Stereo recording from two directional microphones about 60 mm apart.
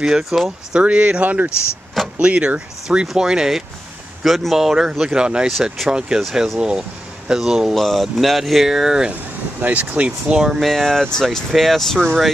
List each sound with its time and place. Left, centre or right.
0.0 s speech: centre
0.7 s speech: centre
1.5 s speech: left
2.1 s speech: centre
7.7 s speech: centre
9.1 s speech: right
10.3 s speech: centre
10.6 s speech: centre